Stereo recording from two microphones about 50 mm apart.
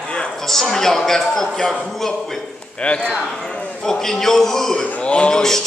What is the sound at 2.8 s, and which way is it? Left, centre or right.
Speech, left.